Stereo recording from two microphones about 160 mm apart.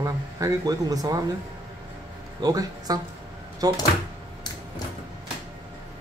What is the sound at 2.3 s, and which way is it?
Speech, 25° right (ahead or behind).